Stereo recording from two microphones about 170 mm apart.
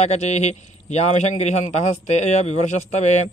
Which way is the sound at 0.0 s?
40° left (ahead or behind).